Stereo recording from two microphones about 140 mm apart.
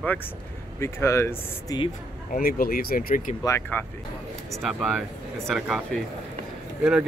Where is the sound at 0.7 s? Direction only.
20° left (ahead or behind).